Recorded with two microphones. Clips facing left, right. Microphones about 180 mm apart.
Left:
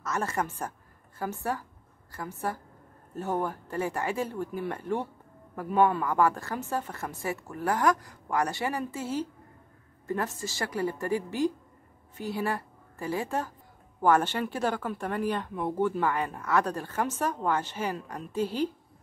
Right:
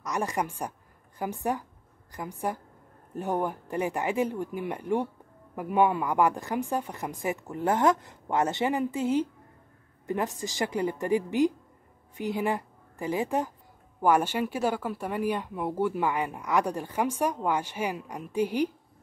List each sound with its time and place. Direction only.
0.0 s a woman's voice: 15° right (ahead or behind)